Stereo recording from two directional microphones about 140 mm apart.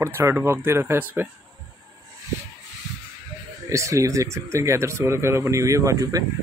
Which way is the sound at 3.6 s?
25° right (ahead or behind).